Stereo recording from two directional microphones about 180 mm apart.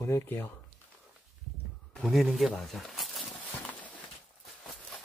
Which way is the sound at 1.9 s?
Centre (ahead or behind).